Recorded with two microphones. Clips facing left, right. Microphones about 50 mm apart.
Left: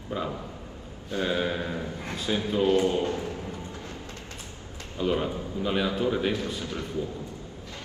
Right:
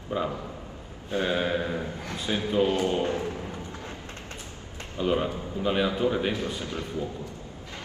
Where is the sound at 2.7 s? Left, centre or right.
Right.